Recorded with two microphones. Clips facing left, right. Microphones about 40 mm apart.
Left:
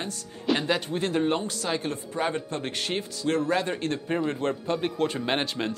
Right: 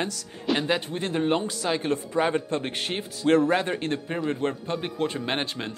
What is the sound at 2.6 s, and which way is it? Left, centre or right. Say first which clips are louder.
Speech: even; right.